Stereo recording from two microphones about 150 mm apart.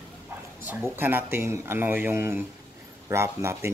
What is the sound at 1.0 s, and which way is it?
Speech, 15° right (ahead or behind).